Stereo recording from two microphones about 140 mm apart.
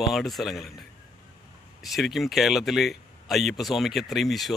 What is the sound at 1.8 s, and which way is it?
Speech, centre (ahead or behind).